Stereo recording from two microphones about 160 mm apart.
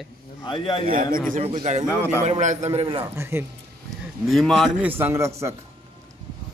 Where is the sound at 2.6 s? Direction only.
35° right (ahead or behind).